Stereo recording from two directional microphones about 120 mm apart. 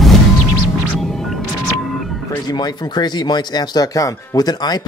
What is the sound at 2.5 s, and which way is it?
Speech, 35° left (ahead or behind).